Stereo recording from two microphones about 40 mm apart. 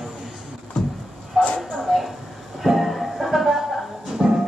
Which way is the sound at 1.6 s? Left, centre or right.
Centre.